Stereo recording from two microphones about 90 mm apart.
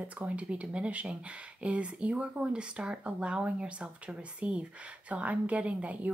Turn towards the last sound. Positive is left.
turn(degrees=-15)  # may be behind; listen again after turning